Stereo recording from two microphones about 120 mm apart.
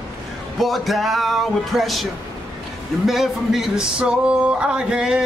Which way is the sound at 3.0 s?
Centre (ahead or behind).